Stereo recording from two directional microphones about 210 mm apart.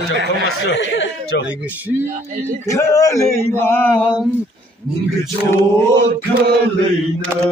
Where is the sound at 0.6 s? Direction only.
60° left (ahead or behind).